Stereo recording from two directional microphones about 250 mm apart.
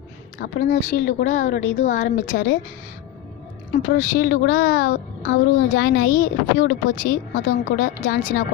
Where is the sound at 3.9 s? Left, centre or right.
Left.